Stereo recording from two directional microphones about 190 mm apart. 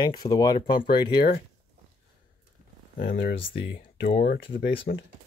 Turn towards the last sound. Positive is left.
turn(degrees=70)  # may be behind; listen again after turning